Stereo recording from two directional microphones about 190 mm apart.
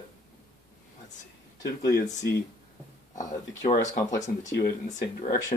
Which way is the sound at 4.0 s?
20° left (ahead or behind).